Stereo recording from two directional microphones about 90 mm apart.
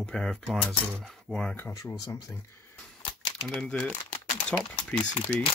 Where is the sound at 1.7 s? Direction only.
40° left (ahead or behind).